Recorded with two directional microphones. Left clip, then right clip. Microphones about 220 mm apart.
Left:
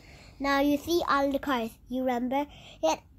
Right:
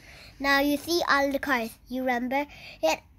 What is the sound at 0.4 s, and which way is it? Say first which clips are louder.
Speech: right 2 dB; 35° right (ahead or behind).